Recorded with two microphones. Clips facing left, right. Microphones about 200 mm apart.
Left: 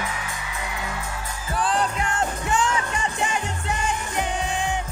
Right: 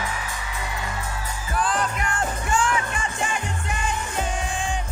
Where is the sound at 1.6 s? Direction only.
30° left (ahead or behind).